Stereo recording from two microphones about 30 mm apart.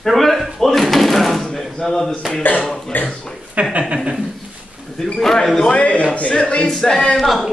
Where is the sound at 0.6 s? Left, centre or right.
Centre.